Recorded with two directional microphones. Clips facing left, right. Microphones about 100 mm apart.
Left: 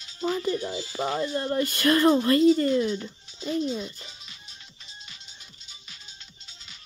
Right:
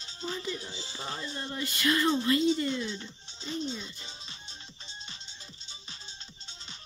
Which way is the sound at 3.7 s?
40° left (ahead or behind).